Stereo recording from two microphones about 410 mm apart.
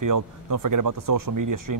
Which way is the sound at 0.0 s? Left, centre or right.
Right.